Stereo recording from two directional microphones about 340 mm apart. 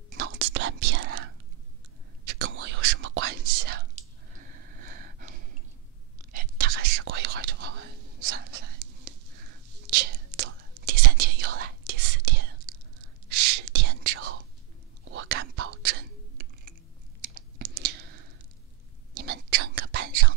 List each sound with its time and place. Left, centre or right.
0.1 s whispering: right
2.2 s whispering: right
4.4 s a sound: right
6.3 s whispering: right
17.2 s computer keyboard: right
19.1 s whispering: right